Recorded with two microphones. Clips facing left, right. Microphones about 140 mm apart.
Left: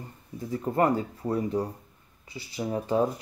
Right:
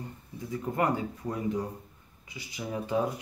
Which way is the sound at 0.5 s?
35° left (ahead or behind).